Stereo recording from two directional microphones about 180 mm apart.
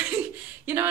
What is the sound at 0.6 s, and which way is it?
Speech, 15° right (ahead or behind).